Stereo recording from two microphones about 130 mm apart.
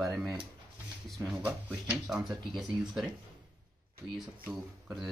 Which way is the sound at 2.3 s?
35° right (ahead or behind).